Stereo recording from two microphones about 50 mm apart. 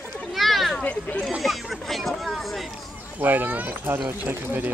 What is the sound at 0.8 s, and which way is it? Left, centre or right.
Speech, left.